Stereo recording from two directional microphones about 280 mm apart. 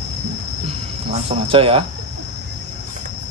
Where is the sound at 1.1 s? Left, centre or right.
Centre.